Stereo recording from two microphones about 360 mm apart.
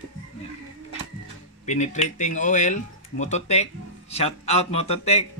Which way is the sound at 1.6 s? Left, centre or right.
Centre.